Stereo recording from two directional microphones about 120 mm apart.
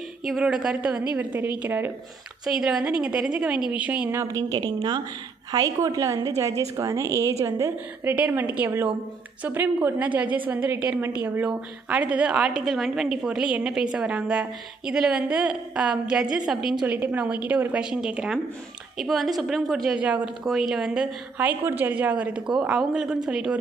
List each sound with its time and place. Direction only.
0.2 s a woman's voice: 5° right (ahead or behind)
2.4 s a woman's voice: 5° right (ahead or behind)
4.2 s a woman's voice: 30° right (ahead or behind); by 20.0 s centre (ahead or behind)
20.0 s a woman's voice: 10° right (ahead or behind)